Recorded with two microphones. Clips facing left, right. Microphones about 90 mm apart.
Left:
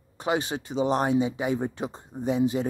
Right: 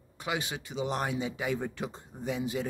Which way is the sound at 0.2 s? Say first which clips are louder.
Left 7 dB; 35° left (ahead or behind).